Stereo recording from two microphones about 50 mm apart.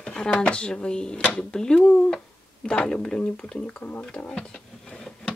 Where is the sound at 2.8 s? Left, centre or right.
Left.